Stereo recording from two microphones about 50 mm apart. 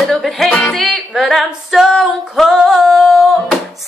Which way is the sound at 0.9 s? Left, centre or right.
Centre.